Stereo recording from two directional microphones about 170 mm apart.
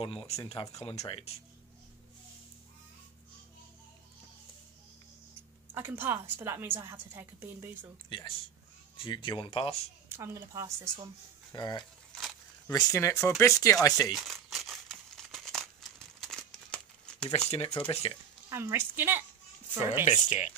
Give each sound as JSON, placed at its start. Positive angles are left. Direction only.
{"t": 0.0, "sound": "speech", "side_deg": 30}
{"t": 5.7, "sound": "a woman's voice", "side_deg": -10}
{"t": 8.1, "sound": "speech", "side_deg": 25}
{"t": 10.0, "sound": "a woman's voice", "side_deg": -15}
{"t": 11.5, "sound": "speech", "side_deg": 25}
{"t": 14.1, "sound": "crumpling", "side_deg": 0}
{"t": 17.5, "sound": "speech", "side_deg": 35}
{"t": 18.5, "sound": "a woman's voice", "side_deg": -15}
{"t": 20.1, "sound": "speech", "side_deg": 45}